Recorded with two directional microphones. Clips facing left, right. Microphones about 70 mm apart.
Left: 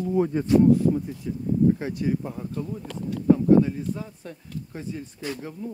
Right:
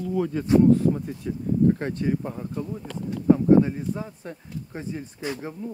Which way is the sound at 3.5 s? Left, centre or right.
Right.